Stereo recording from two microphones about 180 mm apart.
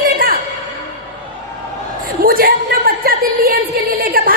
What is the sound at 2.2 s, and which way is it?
A woman's voice, 55° right (ahead or behind).